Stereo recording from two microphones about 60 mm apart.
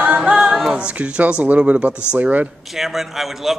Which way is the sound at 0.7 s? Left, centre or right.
Right.